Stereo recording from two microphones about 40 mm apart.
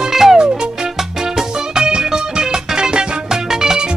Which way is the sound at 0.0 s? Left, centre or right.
Centre.